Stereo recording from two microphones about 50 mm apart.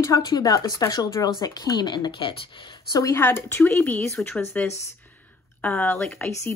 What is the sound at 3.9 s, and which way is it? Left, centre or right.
Speech, left.